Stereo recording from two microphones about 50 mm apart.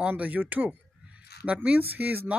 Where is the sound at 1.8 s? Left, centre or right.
Right.